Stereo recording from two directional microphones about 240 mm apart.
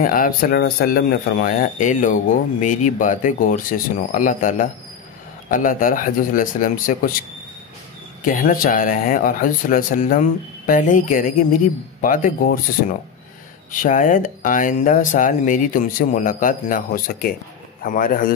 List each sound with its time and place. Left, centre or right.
0.0 s speech: left
8.2 s speech: left
13.7 s speech: left